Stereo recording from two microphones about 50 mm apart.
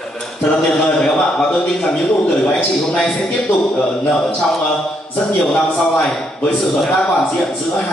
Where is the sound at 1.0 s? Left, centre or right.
Centre.